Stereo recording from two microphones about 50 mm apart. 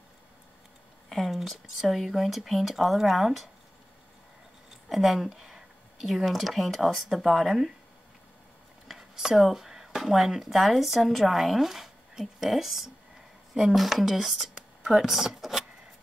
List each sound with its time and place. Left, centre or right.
1.0 s speech: centre
4.8 s speech: centre
8.8 s speech: centre
14.5 s a sound: centre
15.0 s speech: centre